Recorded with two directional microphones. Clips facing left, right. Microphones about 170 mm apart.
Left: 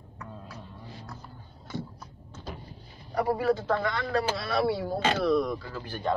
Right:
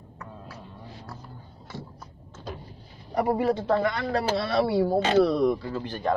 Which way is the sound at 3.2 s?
20° right (ahead or behind).